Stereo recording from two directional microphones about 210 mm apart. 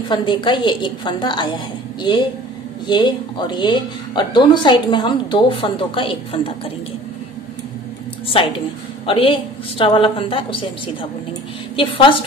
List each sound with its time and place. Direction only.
0.1 s a woman's voice: 20° left (ahead or behind)
2.9 s a woman's voice: 20° left (ahead or behind)
9.0 s a woman's voice: 25° left (ahead or behind)